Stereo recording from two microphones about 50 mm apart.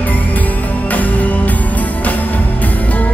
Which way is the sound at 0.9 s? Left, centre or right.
Left.